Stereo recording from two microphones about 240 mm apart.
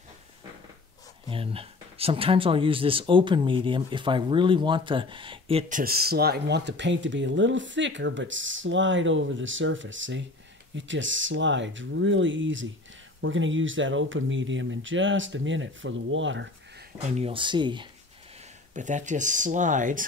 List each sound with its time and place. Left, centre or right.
1.3 s speech: right
17.2 s speech: right
18.8 s speech: right